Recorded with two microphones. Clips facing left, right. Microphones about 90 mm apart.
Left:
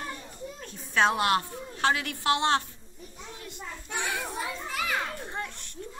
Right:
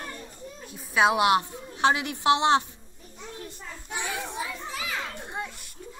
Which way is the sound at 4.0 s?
60° left (ahead or behind).